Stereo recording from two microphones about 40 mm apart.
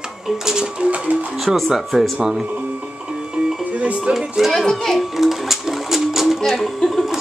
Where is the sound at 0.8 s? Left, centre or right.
Right.